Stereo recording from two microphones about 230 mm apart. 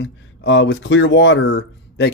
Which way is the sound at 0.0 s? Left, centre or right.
Left.